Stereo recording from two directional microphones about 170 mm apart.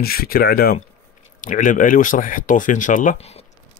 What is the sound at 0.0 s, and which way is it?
Speech, 60° left (ahead or behind).